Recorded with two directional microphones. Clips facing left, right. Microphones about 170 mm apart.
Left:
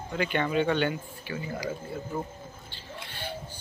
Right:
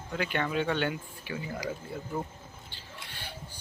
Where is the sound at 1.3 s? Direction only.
15° right (ahead or behind).